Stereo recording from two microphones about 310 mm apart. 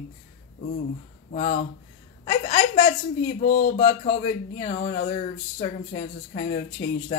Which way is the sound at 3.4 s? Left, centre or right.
Left.